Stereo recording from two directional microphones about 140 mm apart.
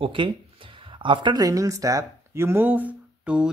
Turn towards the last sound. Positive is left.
turn(degrees=-10)  # may be behind; listen again after turning